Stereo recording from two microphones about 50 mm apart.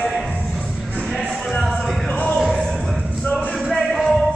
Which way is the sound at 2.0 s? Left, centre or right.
Left.